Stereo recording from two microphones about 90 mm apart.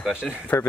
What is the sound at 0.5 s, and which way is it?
Speech, 15° left (ahead or behind).